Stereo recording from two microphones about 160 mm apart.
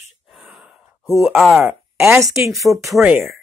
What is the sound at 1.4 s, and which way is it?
Speech, centre (ahead or behind).